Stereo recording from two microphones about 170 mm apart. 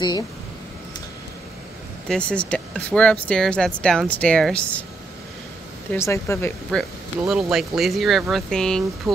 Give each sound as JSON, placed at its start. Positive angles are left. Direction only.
{"t": 2.0, "sound": "speech", "side_deg": 5}
{"t": 5.9, "sound": "speech", "side_deg": 15}
{"t": 6.7, "sound": "speech", "side_deg": 0}